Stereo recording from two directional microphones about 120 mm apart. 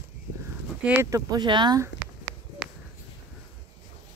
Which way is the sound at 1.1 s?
35° right (ahead or behind).